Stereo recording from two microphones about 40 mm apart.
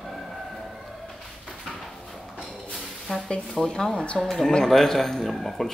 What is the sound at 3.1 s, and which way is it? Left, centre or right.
A man's voice, centre.